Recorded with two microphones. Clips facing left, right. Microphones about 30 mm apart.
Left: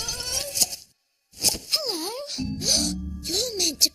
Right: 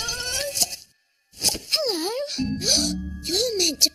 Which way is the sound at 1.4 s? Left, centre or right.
Centre.